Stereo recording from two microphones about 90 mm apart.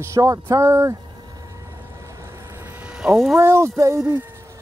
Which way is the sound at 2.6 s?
10° right (ahead or behind).